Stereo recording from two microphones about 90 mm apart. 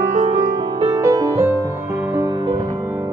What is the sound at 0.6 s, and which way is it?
Music, 65° right (ahead or behind).